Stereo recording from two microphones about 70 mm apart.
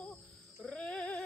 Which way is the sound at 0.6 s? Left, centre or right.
Centre.